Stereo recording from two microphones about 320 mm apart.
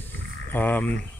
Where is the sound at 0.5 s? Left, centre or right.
Centre.